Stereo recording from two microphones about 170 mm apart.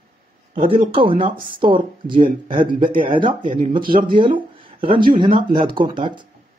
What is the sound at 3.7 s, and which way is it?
Speech, 30° right (ahead or behind).